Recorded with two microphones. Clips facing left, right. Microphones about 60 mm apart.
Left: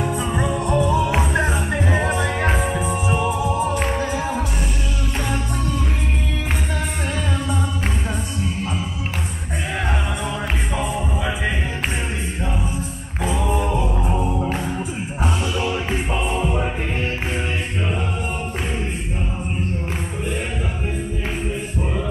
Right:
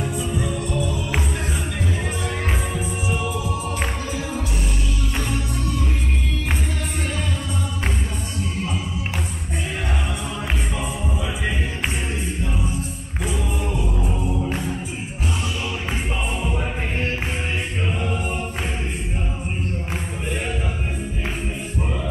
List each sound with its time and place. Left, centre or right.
0.2 s music: left
0.5 s music: left
2.0 s music: left
13.2 s singing: left